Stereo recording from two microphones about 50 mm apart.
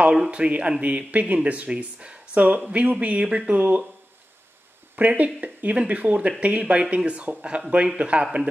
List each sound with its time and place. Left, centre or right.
0.1 s a man's voice: centre
3.5 s speech: right
4.9 s speech: right